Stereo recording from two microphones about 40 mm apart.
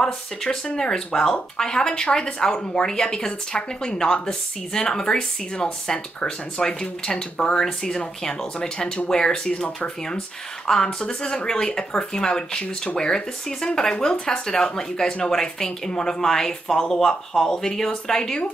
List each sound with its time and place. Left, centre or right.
0.0 s a woman's voice: centre
11.1 s a woman's voice: left